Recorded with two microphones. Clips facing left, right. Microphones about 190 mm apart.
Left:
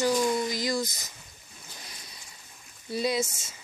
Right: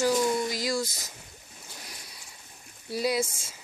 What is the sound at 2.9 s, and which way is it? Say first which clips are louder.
Speech: even; 10° right (ahead or behind).